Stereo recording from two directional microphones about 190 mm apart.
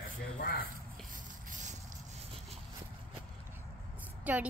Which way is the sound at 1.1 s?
40° right (ahead or behind).